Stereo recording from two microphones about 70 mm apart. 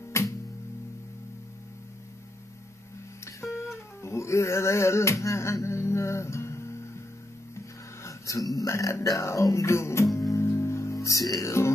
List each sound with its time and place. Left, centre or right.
0.2 s music: left
3.3 s music: left